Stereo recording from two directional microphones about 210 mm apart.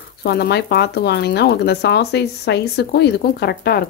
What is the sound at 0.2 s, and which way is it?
Speech, 50° left (ahead or behind).